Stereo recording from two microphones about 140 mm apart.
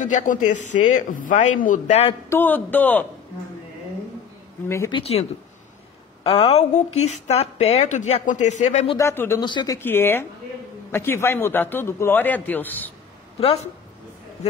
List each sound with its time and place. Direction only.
0.0 s speech: 60° left (ahead or behind)
2.2 s a man's voice: 15° left (ahead or behind)
4.6 s speech: 20° left (ahead or behind)
4.9 s a woman's voice: 45° left (ahead or behind)
6.2 s a woman's voice: 45° left (ahead or behind)
8.9 s a man's voice: 20° left (ahead or behind)
9.4 s speech: 35° left (ahead or behind)
9.8 s a man's voice: 15° left (ahead or behind)
13.4 s a woman's voice: 40° left (ahead or behind)